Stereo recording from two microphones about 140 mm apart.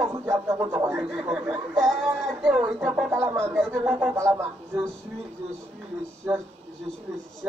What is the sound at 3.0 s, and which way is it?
Speech, 20° right (ahead or behind).